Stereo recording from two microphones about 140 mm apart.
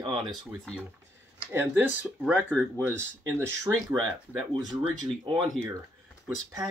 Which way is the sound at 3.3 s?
20° right (ahead or behind).